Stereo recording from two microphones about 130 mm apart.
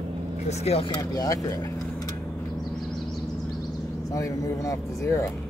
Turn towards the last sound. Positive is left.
turn(degrees=25)  # may be behind; listen again after turning